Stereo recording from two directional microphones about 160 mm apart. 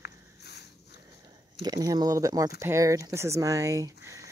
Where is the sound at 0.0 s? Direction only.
90° left.